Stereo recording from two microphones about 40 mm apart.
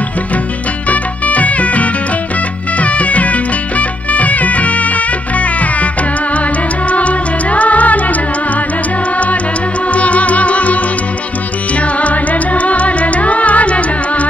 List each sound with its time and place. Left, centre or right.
0.8 s music: left
6.9 s music: left
9.9 s music: left
12.0 s music: left